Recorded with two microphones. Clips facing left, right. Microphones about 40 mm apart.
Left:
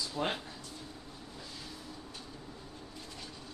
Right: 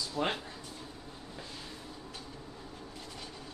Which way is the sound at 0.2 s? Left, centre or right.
Centre.